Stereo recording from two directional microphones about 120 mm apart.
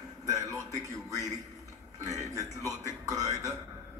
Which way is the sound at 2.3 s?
30° right (ahead or behind).